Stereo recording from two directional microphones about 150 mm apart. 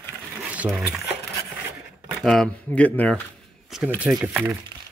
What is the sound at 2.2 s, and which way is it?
Speech, 5° left (ahead or behind).